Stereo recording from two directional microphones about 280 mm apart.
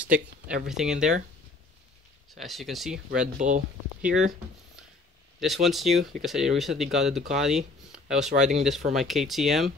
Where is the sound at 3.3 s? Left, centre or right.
Right.